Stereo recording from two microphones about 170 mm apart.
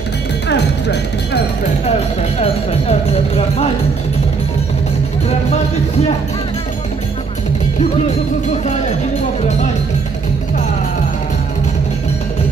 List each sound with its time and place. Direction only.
0.5 s music: 90° left
1.9 s speech: 35° left (ahead or behind)